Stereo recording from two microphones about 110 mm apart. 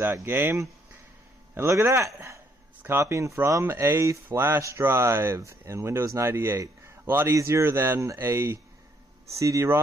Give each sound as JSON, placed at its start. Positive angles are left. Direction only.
{"t": 0.0, "sound": "speech", "side_deg": -20}